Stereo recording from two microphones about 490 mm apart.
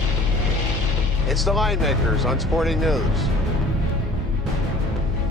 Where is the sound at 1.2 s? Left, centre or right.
Centre.